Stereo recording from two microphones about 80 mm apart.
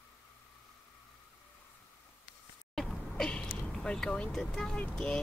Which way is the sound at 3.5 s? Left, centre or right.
Centre.